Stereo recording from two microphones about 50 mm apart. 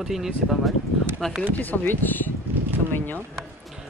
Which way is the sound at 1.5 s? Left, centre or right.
Left.